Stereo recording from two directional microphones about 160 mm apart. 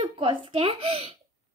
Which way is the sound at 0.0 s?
35° right (ahead or behind).